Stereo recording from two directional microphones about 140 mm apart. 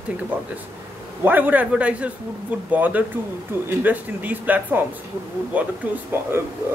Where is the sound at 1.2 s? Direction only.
15° right (ahead or behind).